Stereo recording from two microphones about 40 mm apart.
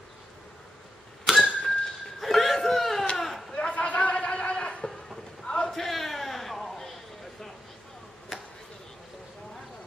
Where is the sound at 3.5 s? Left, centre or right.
Left.